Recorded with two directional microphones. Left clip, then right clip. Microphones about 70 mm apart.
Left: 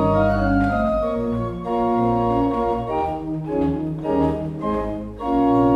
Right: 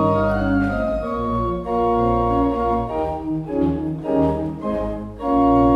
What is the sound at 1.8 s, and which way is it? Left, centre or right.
Organ, centre.